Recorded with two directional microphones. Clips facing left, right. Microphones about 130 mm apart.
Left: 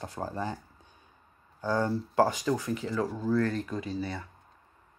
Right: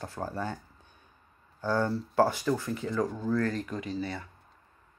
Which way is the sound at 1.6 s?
15° left (ahead or behind).